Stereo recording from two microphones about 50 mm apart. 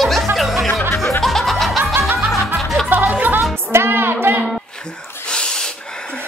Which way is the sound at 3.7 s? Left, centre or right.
Right.